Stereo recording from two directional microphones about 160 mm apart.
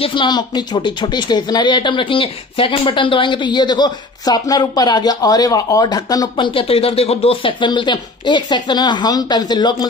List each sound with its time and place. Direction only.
0.0 s speech: 30° left (ahead or behind)